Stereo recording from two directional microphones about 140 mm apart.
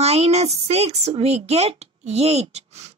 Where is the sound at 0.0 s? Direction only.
50° right (ahead or behind).